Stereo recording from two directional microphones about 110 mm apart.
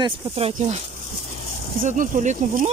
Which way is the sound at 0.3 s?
70° right (ahead or behind).